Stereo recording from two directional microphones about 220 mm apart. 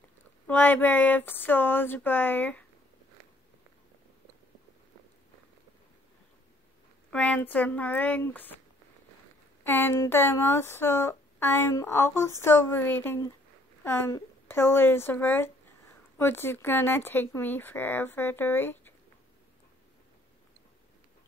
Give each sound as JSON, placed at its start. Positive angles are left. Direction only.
{"t": 0.5, "sound": "speech", "side_deg": 10}
{"t": 7.1, "sound": "speech", "side_deg": 5}
{"t": 9.7, "sound": "speech", "side_deg": 10}